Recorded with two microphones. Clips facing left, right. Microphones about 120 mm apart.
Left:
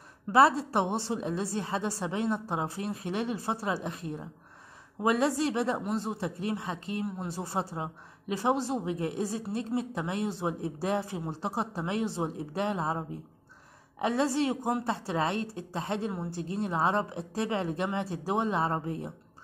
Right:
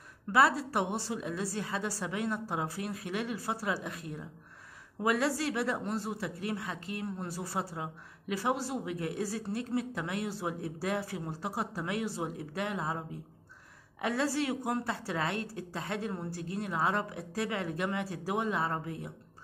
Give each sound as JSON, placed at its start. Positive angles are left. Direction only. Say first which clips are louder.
{"t": 0.3, "sound": "a woman's voice", "louder": "left 4 dB", "side_deg": 25}